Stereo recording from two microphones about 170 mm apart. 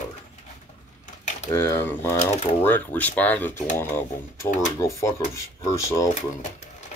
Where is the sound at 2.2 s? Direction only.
40° left (ahead or behind).